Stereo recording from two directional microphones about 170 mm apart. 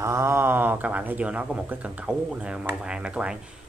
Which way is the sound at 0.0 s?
15° right (ahead or behind).